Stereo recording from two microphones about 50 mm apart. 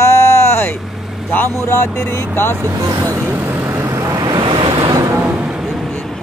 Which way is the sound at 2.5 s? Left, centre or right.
Right.